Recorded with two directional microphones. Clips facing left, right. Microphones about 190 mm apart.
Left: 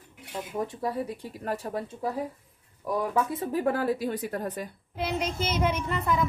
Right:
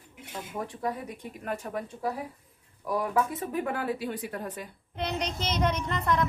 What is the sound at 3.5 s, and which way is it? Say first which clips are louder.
Speech: left 5 dB; 40° left (ahead or behind).